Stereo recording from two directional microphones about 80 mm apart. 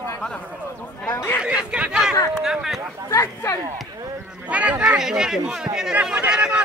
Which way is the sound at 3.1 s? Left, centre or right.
Left.